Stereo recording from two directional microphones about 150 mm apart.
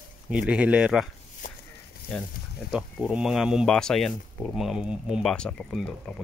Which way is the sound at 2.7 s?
5° right (ahead or behind).